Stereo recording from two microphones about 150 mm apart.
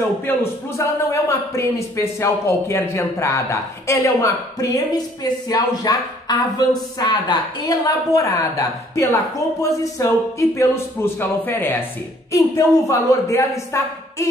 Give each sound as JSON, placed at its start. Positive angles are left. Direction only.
{"t": 0.3, "sound": "a man's voice", "side_deg": 20}